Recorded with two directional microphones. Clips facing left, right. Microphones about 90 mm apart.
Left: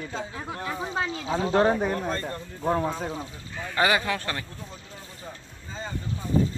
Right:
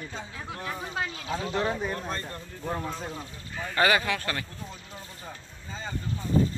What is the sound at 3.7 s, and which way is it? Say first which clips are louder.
Speech: even; 20° left (ahead or behind).